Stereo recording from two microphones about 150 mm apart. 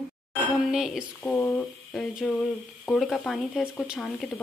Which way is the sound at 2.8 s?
Centre (ahead or behind).